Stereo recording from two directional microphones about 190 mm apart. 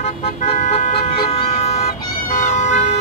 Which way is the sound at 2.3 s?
40° left (ahead or behind).